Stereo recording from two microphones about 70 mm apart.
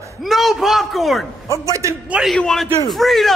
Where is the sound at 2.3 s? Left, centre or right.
Centre.